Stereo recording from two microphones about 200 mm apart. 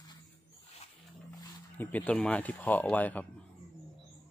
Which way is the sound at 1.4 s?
10° left (ahead or behind).